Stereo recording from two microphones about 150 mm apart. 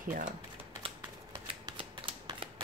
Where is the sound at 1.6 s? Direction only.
35° right (ahead or behind).